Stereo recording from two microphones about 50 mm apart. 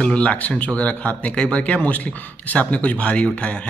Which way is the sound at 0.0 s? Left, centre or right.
Left.